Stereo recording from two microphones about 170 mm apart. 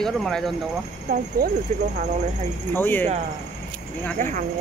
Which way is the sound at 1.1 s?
60° right (ahead or behind).